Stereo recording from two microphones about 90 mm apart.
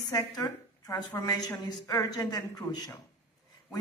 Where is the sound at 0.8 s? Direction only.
40° left (ahead or behind).